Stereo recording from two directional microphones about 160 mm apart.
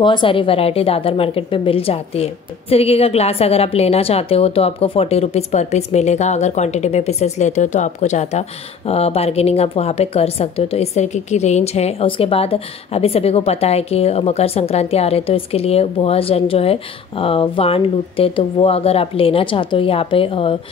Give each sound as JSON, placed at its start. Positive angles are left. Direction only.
{"t": 0.0, "sound": "a woman's voice", "side_deg": 30}